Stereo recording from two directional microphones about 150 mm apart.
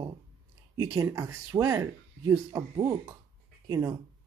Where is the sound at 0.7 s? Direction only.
25° right (ahead or behind).